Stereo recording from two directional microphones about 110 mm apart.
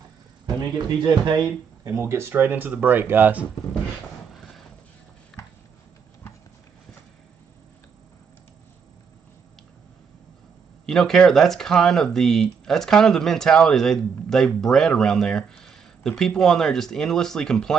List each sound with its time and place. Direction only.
0.6 s speech: 45° right (ahead or behind)
1.9 s speech: 25° right (ahead or behind)
10.9 s speech: 5° left (ahead or behind)